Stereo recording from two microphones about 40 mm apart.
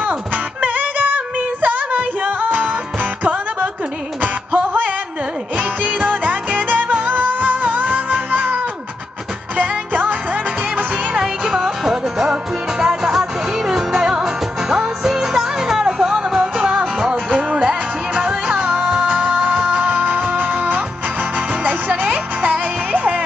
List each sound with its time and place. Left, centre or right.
0.6 s music: right
4.2 s music: right
9.6 s music: right
11.1 s music: centre
17.1 s music: right
19.1 s music: centre
19.7 s music: right
22.0 s music: right